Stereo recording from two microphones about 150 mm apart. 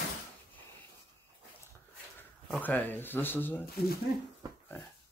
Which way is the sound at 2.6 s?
10° left (ahead or behind).